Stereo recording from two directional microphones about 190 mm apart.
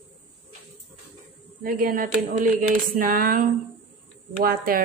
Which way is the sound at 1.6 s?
50° right (ahead or behind).